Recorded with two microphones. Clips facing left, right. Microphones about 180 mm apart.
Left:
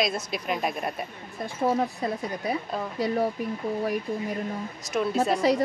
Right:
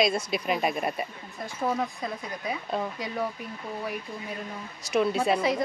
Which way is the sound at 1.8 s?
40° left (ahead or behind).